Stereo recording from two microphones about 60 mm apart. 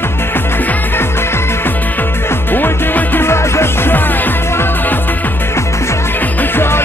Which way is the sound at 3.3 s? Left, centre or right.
Left.